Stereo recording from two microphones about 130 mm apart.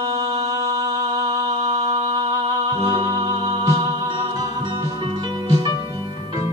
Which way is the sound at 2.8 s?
45° right (ahead or behind).